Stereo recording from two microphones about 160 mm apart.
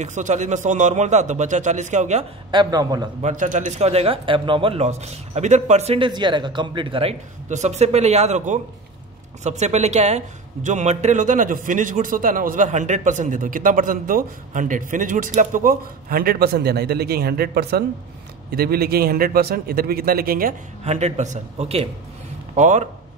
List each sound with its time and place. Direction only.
0.0 s a man's voice: 50° right (ahead or behind)
2.5 s a man's voice: 25° right (ahead or behind)
3.2 s speech: 50° right (ahead or behind)
7.4 s a man's voice: 45° right (ahead or behind); by 17.8 s 85° right
18.5 s a man's voice: 75° right (ahead or behind)
20.8 s a man's voice: 45° right (ahead or behind)